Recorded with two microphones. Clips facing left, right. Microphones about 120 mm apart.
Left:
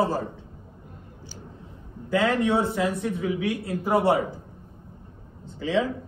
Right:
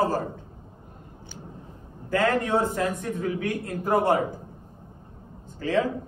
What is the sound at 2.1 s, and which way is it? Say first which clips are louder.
A man's voice: left 1 dB; 15° left (ahead or behind).